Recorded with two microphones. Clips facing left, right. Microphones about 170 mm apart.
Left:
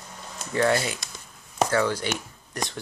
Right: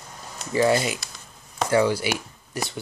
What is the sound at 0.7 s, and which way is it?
Speech, 10° right (ahead or behind).